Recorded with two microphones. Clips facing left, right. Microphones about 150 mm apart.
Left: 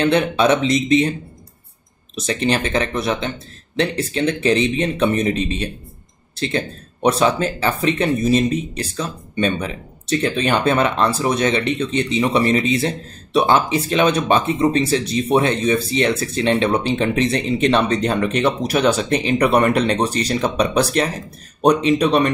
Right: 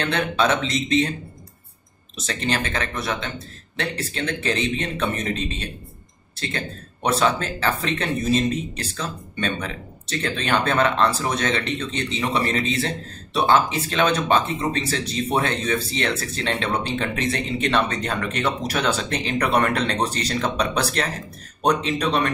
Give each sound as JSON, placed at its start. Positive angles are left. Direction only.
{"t": 0.0, "sound": "speech", "side_deg": 15}
{"t": 2.1, "sound": "speech", "side_deg": 15}